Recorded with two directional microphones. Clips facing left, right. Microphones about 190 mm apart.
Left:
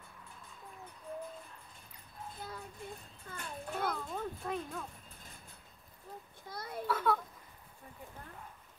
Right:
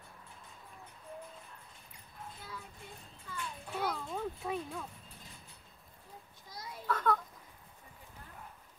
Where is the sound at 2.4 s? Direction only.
45° left (ahead or behind).